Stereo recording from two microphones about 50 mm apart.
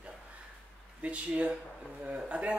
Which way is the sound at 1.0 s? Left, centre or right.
Right.